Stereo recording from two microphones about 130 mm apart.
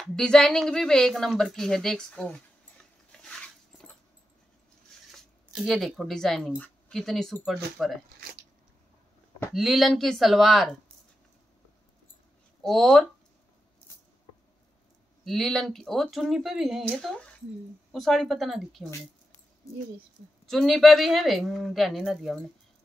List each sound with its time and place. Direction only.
0.0 s speech: 5° left (ahead or behind)
3.1 s dog: 5° left (ahead or behind)
5.1 s speech: centre (ahead or behind)
9.5 s speech: centre (ahead or behind)
12.6 s speech: centre (ahead or behind)
15.2 s speech: centre (ahead or behind)
20.4 s speech: centre (ahead or behind)